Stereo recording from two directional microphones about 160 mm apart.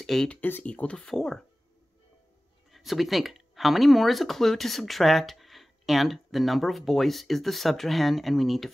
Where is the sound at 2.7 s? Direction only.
Centre (ahead or behind).